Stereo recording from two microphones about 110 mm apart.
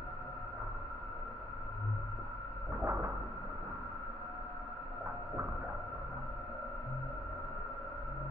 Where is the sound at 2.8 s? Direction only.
35° right (ahead or behind).